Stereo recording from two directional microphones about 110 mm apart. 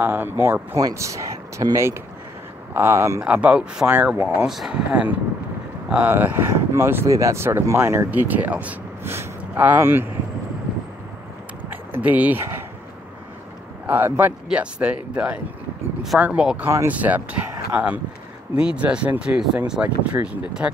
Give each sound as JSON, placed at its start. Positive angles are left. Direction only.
{"t": 0.0, "sound": "speech", "side_deg": -20}
{"t": 0.7, "sound": "speech", "side_deg": -30}
{"t": 3.2, "sound": "speech", "side_deg": -10}
{"t": 11.7, "sound": "a sound", "side_deg": -15}
{"t": 13.8, "sound": "speech", "side_deg": -20}